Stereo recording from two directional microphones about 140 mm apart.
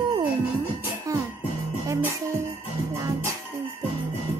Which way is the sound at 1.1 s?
25° right (ahead or behind).